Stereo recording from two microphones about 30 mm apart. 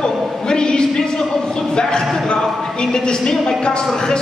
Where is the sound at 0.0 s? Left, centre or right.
Left.